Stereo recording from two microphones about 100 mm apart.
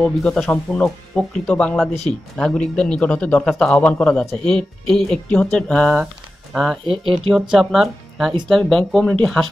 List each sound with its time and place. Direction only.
0.0 s speech: 5° left (ahead or behind)
6.9 s speech: 65° right (ahead or behind)
7.2 s speech: 5° right (ahead or behind)